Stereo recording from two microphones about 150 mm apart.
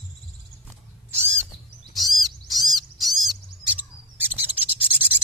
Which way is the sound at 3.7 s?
15° right (ahead or behind).